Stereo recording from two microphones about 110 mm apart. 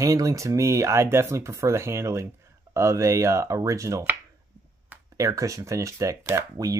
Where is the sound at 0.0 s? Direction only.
30° right (ahead or behind).